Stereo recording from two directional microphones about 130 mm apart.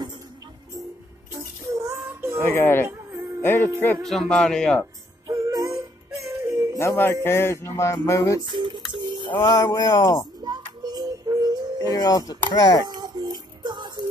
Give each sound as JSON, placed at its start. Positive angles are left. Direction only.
{"t": 1.8, "sound": "child singing", "side_deg": -25}
{"t": 2.4, "sound": "speech", "side_deg": 15}
{"t": 2.9, "sound": "music", "side_deg": -20}
{"t": 3.4, "sound": "speech", "side_deg": 15}
{"t": 4.1, "sound": "speech", "side_deg": 5}
{"t": 5.2, "sound": "music", "side_deg": -30}
{"t": 6.8, "sound": "music", "side_deg": 20}
{"t": 8.4, "sound": "speech", "side_deg": -35}
{"t": 9.3, "sound": "speech", "side_deg": 35}
{"t": 10.4, "sound": "music", "side_deg": -30}
{"t": 11.9, "sound": "music", "side_deg": 30}
{"t": 12.8, "sound": "child singing", "side_deg": -35}